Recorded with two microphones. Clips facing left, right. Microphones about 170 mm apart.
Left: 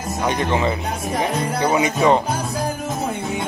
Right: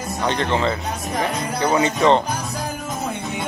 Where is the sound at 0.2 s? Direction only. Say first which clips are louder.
Left 1 dB; 15° left (ahead or behind).